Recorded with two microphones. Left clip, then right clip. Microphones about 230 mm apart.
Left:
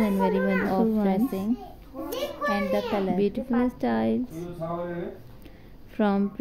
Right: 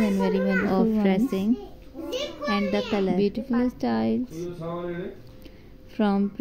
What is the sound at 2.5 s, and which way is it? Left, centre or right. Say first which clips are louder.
A woman's voice: right 1 dB; centre.